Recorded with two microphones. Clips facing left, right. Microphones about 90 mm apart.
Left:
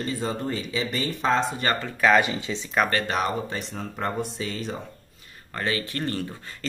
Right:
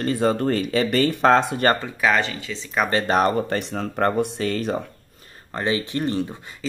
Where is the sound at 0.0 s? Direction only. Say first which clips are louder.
Right 8 dB; 60° right (ahead or behind).